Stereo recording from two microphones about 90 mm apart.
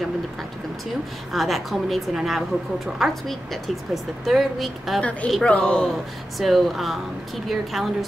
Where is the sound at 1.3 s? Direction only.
Centre (ahead or behind).